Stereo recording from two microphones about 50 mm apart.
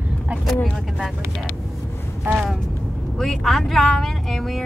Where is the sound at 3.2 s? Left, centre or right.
Centre.